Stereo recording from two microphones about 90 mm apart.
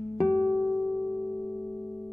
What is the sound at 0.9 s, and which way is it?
Singing bowl, 15° right (ahead or behind).